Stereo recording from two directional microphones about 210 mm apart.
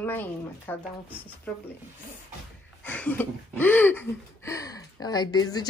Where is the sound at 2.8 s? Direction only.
5° left (ahead or behind).